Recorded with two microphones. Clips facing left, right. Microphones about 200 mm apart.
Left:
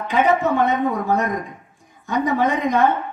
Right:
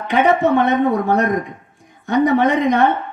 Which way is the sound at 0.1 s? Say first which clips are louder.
Right 4 dB; 70° right (ahead or behind).